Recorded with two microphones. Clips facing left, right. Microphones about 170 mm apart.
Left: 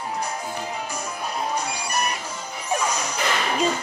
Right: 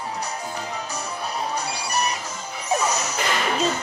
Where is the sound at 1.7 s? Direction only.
35° right (ahead or behind).